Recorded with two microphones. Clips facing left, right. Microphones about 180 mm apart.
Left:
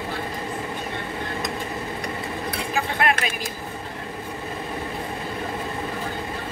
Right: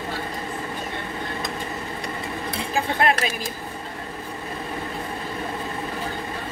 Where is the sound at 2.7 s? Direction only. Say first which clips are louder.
Right 2 dB; 35° right (ahead or behind).